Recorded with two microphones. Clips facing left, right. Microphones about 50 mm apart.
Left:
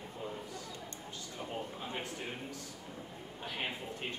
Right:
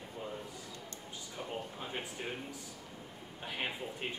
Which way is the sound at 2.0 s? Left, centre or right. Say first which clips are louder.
Even; centre.